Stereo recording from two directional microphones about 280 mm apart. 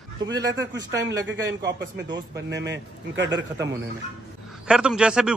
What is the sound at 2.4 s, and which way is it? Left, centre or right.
Speech, right.